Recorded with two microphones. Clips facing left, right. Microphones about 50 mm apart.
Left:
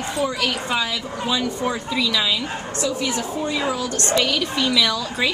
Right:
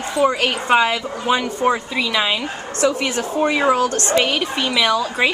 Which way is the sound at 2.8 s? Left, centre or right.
Right.